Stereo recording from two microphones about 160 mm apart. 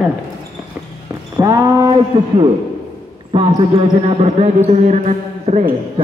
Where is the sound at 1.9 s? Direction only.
30° right (ahead or behind).